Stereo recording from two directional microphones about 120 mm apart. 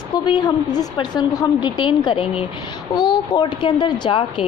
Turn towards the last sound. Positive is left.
turn(degrees=40)  # may be behind; listen again after turning